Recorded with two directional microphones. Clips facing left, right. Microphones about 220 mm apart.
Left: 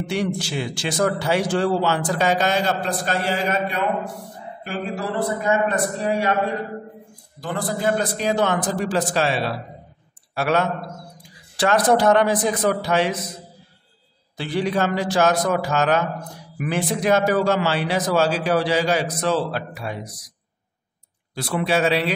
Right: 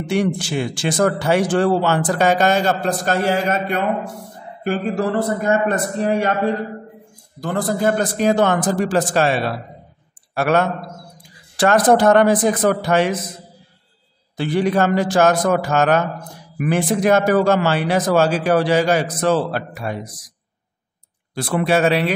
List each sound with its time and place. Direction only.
0.0 s speech: 50° right (ahead or behind)
7.3 s speech: 45° right (ahead or behind)
14.3 s speech: 50° right (ahead or behind)
21.4 s speech: 50° right (ahead or behind)